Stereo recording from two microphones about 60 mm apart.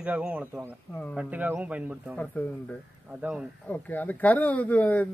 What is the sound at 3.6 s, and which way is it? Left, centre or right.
Speech, left.